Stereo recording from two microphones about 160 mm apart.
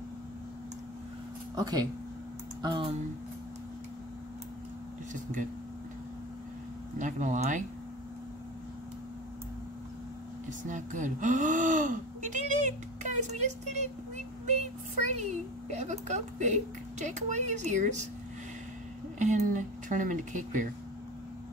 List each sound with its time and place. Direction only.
1.5 s speech: 25° right (ahead or behind)
5.1 s speech: 55° right (ahead or behind)
7.0 s speech: 50° right (ahead or behind)
10.7 s speech: 50° right (ahead or behind)
15.7 s speech: 45° right (ahead or behind)
19.1 s speech: 50° right (ahead or behind)